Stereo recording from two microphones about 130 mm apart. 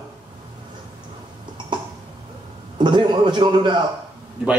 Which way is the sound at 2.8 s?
35° right (ahead or behind).